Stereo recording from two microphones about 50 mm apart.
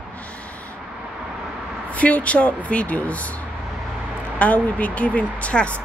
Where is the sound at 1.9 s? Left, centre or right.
Left.